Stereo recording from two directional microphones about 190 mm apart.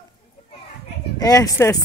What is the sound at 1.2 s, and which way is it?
Speech, 20° left (ahead or behind).